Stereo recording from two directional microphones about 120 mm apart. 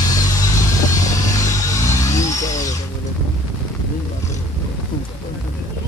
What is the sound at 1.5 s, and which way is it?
Music, 25° left (ahead or behind).